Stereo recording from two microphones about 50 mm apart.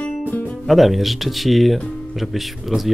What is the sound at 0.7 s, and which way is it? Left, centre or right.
Speech, centre.